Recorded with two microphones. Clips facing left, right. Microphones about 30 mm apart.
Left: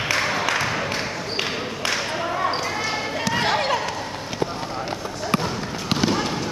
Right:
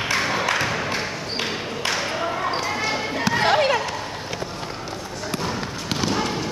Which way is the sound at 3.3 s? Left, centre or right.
Centre.